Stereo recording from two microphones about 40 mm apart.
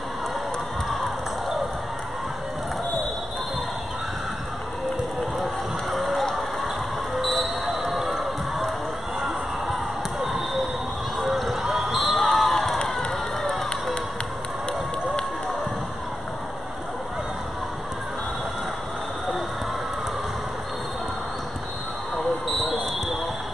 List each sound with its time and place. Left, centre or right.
5.9 s a sound: centre
7.2 s basketball bounce: centre
10.2 s basketball bounce: centre
11.1 s run: centre
11.6 s crowd: centre